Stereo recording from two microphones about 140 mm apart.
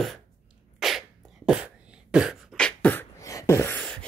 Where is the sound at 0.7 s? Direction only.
Centre (ahead or behind).